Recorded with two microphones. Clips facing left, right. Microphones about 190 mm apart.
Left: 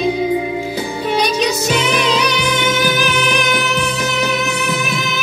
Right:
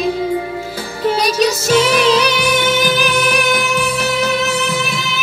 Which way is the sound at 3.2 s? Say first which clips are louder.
Right 1 dB; 15° left (ahead or behind).